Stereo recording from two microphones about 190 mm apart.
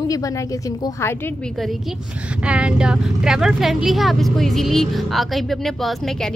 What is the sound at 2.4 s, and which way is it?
A woman's voice, 5° right (ahead or behind).